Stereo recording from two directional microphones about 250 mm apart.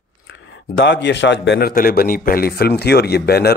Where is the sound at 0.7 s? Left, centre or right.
Left.